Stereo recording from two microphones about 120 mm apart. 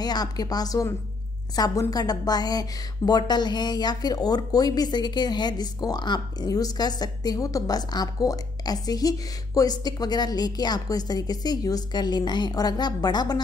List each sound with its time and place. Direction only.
0.0 s a woman's voice: 35° left (ahead or behind)